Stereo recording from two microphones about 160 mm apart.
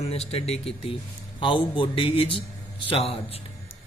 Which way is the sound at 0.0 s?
40° left (ahead or behind).